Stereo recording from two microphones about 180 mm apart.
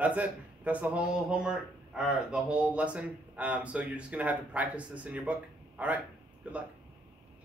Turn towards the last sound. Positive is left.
turn(degrees=-10)  # may be behind; listen again after turning